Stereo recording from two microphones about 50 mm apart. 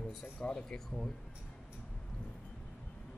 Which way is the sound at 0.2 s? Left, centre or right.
Centre.